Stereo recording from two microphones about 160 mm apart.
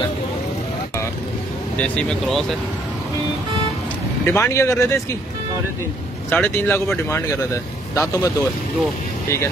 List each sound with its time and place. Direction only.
1.8 s speech: 5° left (ahead or behind)
4.3 s speech: 15° left (ahead or behind)
6.3 s speech: 10° left (ahead or behind)